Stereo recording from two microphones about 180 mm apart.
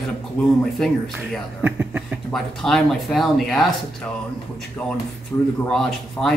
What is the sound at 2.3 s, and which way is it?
Speech, centre (ahead or behind).